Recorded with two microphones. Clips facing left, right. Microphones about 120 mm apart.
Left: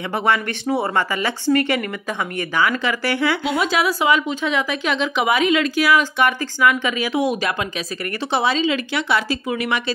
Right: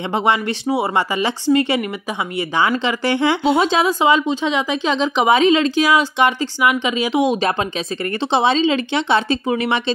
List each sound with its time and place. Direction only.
0.1 s speech: 20° right (ahead or behind)